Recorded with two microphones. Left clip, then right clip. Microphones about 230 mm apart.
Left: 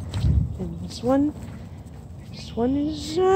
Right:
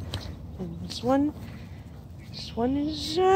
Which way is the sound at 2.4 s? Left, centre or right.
Centre.